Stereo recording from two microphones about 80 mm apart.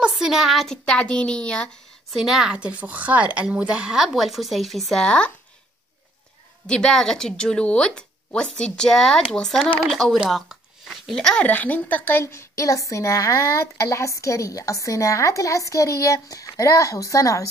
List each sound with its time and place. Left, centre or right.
0.1 s speech: centre
2.0 s a woman's voice: centre
2.5 s a woman's voice: centre
6.7 s a woman's voice: centre
10.2 s a sound: centre
11.4 s a woman's voice: centre; by 17.4 s left